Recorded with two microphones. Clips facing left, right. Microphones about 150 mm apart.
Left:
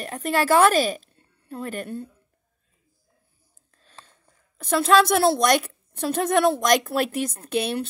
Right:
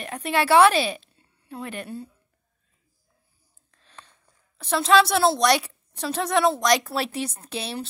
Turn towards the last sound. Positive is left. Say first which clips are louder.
# left 7 dB
turn(degrees=55)  # may be behind; listen again after turning